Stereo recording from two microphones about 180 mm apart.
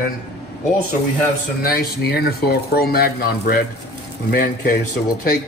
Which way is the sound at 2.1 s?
60° left (ahead or behind).